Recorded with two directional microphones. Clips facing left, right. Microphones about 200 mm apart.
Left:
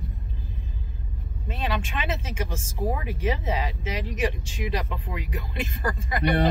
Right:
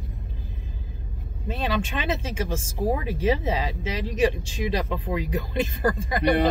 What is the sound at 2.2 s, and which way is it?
Speech, 30° right (ahead or behind).